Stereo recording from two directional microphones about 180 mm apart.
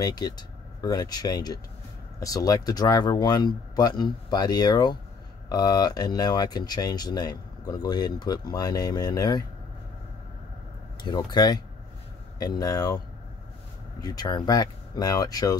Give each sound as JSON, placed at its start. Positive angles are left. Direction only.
{"t": 0.0, "sound": "speech", "side_deg": 20}
{"t": 11.1, "sound": "speech", "side_deg": 25}
{"t": 14.0, "sound": "speech", "side_deg": 20}